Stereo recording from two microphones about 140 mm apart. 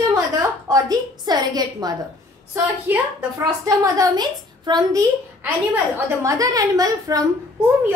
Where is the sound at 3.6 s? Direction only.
25° right (ahead or behind).